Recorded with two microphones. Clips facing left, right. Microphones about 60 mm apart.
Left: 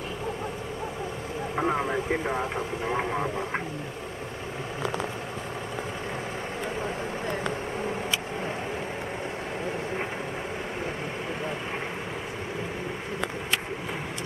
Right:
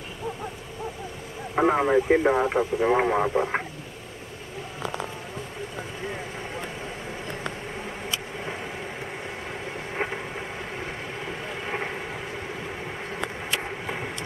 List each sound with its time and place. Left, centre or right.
1.5 s speech: right